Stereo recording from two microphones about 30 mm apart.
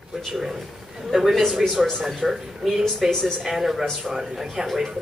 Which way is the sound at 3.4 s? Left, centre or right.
Centre.